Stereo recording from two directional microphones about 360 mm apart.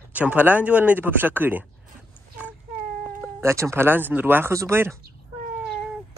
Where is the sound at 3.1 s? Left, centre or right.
Centre.